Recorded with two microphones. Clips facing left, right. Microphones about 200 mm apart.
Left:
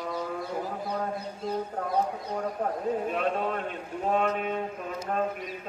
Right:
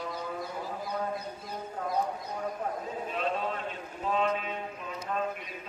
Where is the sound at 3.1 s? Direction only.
50° left (ahead or behind).